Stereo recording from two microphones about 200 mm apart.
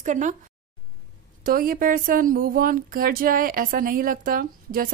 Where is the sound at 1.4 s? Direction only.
45° right (ahead or behind).